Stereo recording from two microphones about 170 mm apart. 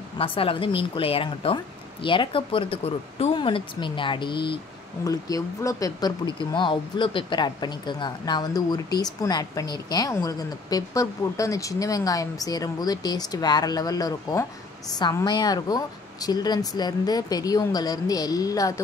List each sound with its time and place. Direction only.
0.2 s speech: 30° left (ahead or behind)